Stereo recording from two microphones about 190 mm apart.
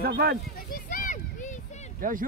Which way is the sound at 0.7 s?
45° left (ahead or behind).